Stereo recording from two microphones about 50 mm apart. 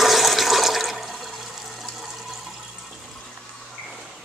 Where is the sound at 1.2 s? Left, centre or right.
Centre.